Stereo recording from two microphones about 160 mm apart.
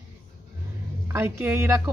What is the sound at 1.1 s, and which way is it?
Speech, 15° right (ahead or behind).